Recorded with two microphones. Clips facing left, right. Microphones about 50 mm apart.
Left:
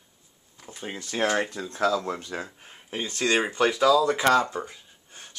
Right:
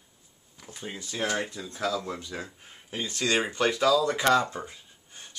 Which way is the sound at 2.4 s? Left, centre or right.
Left.